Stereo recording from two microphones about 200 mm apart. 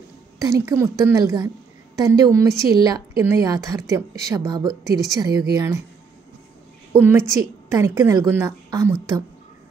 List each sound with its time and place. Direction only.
0.4 s a woman's voice: 15° right (ahead or behind)
7.0 s a woman's voice: 15° right (ahead or behind)